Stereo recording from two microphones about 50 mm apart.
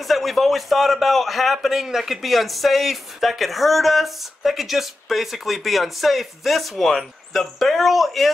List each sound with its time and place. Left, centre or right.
0.1 s a man's voice: centre